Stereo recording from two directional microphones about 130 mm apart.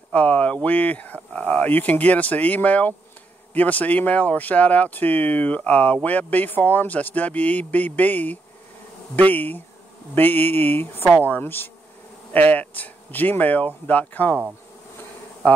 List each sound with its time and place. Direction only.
0.1 s speech: 10° left (ahead or behind)